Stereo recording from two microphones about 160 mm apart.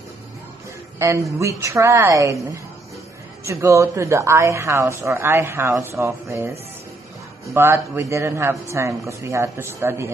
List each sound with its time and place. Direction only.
0.9 s a man's voice: 15° right (ahead or behind)
3.4 s speech: 20° right (ahead or behind)
7.5 s speech: 15° right (ahead or behind)